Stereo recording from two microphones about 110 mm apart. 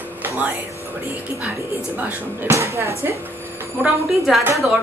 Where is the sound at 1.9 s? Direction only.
15° right (ahead or behind).